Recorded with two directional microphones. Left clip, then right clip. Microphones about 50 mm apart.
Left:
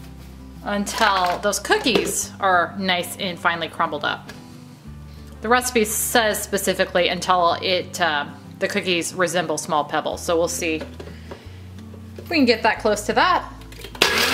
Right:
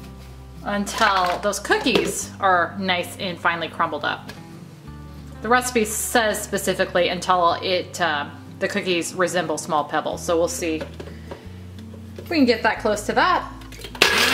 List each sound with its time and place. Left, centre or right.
0.7 s a woman's voice: left
5.4 s a woman's voice: left
12.3 s a woman's voice: left
13.9 s a sound: centre